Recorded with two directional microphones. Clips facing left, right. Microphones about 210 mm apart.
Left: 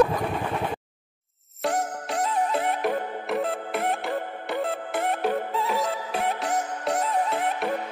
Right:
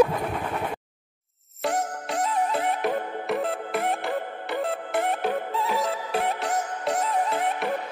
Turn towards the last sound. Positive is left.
turn(degrees=0)  # may be behind; listen again after turning